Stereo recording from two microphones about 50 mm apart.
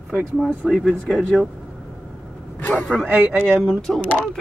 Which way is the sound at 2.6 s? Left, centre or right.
Left.